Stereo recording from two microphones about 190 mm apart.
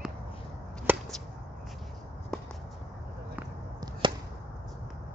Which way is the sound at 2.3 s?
5° left (ahead or behind).